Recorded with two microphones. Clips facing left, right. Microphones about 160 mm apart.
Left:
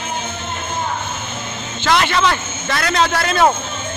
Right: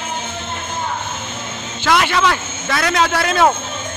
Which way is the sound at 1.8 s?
10° right (ahead or behind).